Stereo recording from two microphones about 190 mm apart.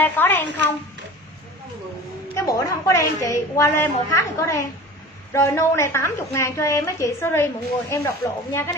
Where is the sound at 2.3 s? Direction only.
15° left (ahead or behind).